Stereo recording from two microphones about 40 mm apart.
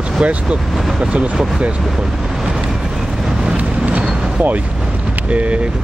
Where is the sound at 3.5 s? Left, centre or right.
Right.